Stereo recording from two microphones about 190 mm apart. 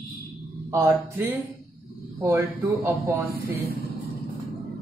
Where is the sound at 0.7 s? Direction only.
15° right (ahead or behind).